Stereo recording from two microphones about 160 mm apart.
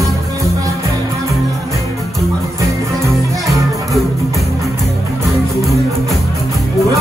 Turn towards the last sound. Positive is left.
turn(degrees=0)  # may be behind; listen again after turning